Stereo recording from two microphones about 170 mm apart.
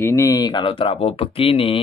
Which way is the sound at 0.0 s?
15° left (ahead or behind).